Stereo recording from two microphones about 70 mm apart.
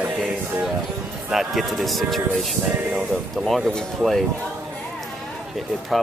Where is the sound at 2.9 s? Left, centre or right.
Centre.